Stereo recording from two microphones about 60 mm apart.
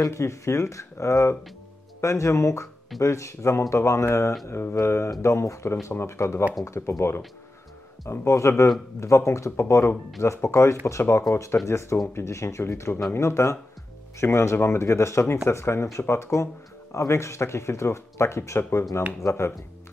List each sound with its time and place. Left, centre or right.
0.0 s speech: left
18.6 s speech: left